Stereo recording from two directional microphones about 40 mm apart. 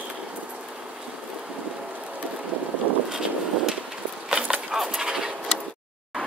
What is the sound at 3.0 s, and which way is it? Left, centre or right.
Vehicle, centre.